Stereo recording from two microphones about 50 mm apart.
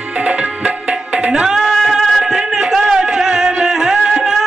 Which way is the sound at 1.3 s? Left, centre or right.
Centre.